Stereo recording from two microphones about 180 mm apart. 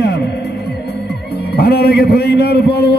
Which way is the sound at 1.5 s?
60° left (ahead or behind).